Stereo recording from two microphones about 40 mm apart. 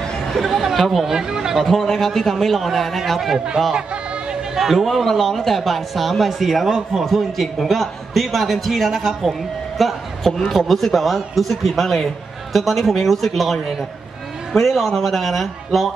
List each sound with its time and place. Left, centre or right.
0.3 s speech: centre
1.0 s speech: centre
1.7 s speech: centre
3.7 s chatter: right
4.6 s speech: centre